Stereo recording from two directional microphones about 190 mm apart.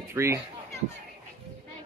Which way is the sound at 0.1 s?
15° right (ahead or behind).